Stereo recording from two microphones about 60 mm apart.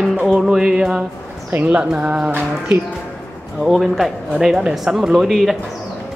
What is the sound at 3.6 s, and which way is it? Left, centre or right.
Speech, centre.